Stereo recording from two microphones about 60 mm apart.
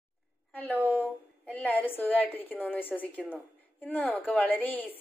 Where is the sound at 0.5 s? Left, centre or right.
Left.